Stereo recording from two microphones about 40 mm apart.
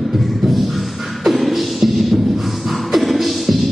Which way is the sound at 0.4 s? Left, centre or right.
Centre.